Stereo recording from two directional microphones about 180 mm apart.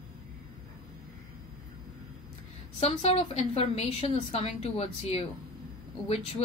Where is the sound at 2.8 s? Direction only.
35° left (ahead or behind).